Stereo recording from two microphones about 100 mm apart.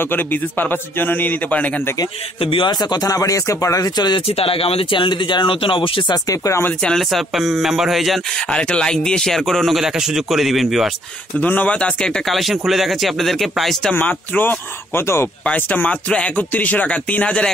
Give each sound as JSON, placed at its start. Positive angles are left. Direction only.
{"t": 0.0, "sound": "a man's voice", "side_deg": 20}
{"t": 2.4, "sound": "speech", "side_deg": 65}
{"t": 2.7, "sound": "speech", "side_deg": 45}
{"t": 4.3, "sound": "speech", "side_deg": 75}
{"t": 6.1, "sound": "speech", "side_deg": 35}
{"t": 6.8, "sound": "speech", "side_deg": 5}
{"t": 11.3, "sound": "speech", "side_deg": 15}
{"t": 13.9, "sound": "a man's voice", "side_deg": 15}